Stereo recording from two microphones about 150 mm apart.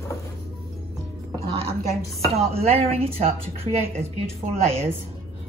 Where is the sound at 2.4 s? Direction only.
45° right (ahead or behind).